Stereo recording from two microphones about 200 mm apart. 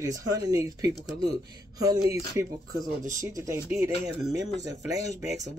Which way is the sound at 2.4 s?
15° right (ahead or behind).